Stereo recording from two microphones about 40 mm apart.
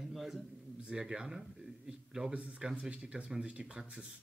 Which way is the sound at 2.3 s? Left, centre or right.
Right.